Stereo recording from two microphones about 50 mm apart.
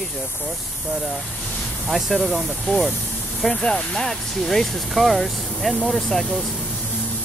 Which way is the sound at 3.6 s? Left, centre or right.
Centre.